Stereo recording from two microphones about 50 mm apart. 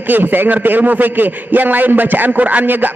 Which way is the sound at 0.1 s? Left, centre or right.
Right.